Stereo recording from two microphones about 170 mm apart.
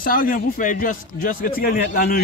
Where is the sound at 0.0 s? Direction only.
55° left (ahead or behind).